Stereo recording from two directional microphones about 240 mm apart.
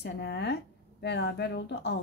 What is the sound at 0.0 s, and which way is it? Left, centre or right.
A woman's voice, left.